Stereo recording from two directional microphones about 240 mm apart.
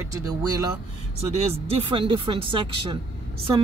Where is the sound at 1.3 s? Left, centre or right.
Right.